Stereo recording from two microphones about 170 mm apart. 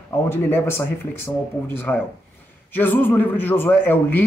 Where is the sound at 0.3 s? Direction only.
15° left (ahead or behind).